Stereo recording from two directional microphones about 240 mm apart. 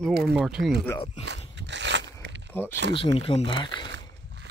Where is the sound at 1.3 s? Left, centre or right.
Right.